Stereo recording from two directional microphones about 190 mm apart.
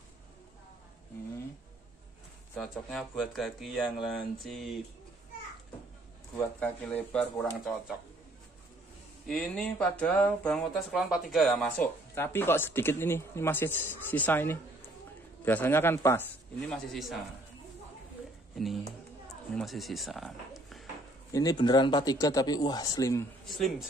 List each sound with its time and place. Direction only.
2.5 s speech: 5° left (ahead or behind)
6.3 s speech: 10° left (ahead or behind)
9.3 s speech: 5° left (ahead or behind)
12.2 s speech: 10° left (ahead or behind)
19.5 s speech: centre (ahead or behind)
21.3 s speech: 20° left (ahead or behind)
23.4 s speech: centre (ahead or behind)